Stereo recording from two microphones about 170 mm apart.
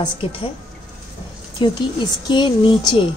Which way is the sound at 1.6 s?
30° left (ahead or behind).